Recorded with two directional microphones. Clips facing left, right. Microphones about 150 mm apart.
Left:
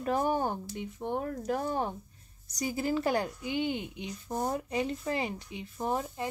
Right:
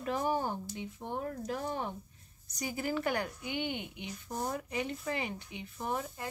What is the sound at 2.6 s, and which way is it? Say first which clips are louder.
Speech: left 4 dB; 30° left (ahead or behind).